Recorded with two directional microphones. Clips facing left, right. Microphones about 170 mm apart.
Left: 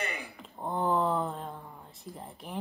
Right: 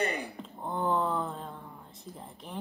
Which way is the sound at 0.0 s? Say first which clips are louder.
Right 6 dB; 35° right (ahead or behind).